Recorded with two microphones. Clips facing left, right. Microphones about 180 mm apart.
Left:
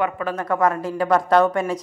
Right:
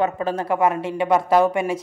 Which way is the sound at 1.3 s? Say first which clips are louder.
Left 1 dB; 5° right (ahead or behind).